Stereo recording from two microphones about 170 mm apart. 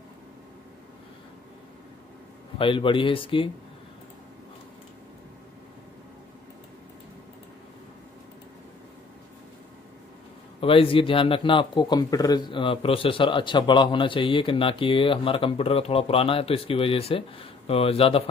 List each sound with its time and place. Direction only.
2.6 s a man's voice: 30° left (ahead or behind)
10.6 s a man's voice: 30° left (ahead or behind)